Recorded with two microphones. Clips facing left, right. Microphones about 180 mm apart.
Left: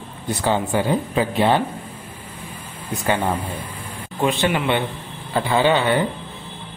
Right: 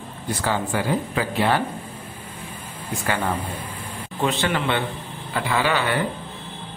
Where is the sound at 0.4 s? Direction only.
25° left (ahead or behind).